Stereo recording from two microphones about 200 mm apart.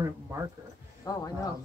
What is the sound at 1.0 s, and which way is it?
Speech, 20° left (ahead or behind).